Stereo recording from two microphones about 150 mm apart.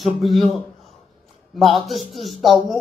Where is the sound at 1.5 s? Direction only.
Centre (ahead or behind).